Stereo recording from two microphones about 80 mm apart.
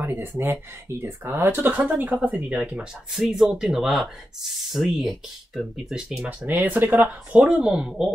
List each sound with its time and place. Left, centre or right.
0.0 s speech: right
2.7 s speech: centre